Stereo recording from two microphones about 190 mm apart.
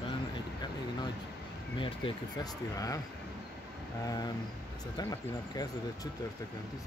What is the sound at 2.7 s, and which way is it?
Speech, 20° left (ahead or behind).